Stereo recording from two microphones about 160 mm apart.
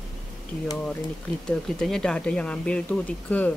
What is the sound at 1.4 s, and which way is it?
Speech, 5° left (ahead or behind).